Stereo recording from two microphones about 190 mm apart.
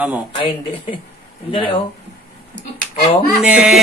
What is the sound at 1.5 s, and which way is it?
Speech, 30° left (ahead or behind).